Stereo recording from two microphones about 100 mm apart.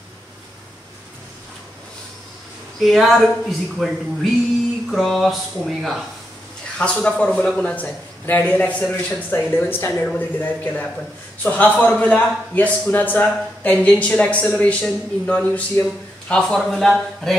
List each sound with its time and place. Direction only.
2.8 s speech: centre (ahead or behind)
6.8 s a man's voice: 10° left (ahead or behind)